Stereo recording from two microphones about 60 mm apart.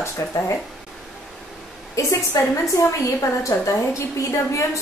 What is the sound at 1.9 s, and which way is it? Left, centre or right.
A woman's voice, left.